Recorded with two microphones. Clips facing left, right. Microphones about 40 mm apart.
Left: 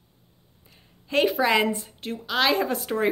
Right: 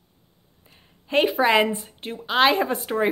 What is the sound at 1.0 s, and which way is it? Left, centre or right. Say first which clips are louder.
A woman's voice: right 2 dB; centre.